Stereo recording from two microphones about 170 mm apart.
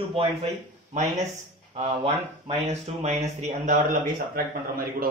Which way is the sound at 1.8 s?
35° right (ahead or behind).